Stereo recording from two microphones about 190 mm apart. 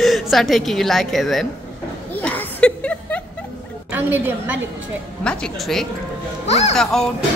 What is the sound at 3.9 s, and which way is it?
Speech, 10° right (ahead or behind).